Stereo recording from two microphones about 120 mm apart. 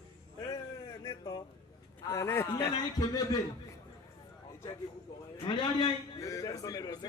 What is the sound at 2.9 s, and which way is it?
Speech, 30° left (ahead or behind).